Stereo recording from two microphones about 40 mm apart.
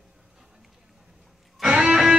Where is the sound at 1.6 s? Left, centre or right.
Right.